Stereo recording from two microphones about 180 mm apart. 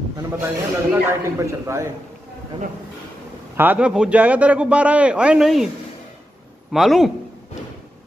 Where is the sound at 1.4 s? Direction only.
15° right (ahead or behind).